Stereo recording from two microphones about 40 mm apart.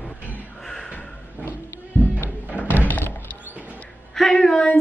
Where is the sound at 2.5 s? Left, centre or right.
Left.